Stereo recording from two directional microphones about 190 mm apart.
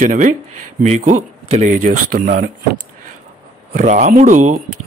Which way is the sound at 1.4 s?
40° right (ahead or behind).